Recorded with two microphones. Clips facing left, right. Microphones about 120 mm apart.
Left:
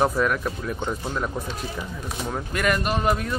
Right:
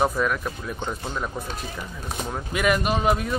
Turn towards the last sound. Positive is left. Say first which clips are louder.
# right 1 dB
turn(degrees=-5)  # may be behind; listen again after turning